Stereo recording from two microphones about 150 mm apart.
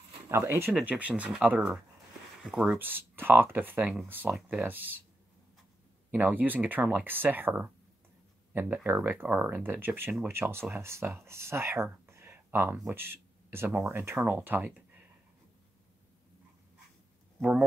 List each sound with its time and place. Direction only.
0.3 s speech: 15° right (ahead or behind)
6.1 s speech: 10° right (ahead or behind)
17.4 s speech: 5° right (ahead or behind)